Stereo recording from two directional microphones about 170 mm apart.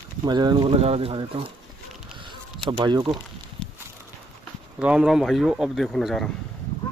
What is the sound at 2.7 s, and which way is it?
Speech, 25° right (ahead or behind).